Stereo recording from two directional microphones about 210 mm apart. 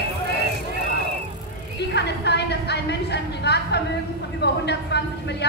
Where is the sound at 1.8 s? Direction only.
55° left (ahead or behind).